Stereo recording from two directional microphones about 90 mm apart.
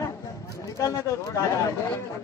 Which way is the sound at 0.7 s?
35° left (ahead or behind).